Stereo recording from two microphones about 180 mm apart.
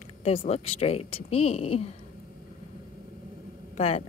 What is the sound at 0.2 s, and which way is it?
A woman's voice, 35° left (ahead or behind).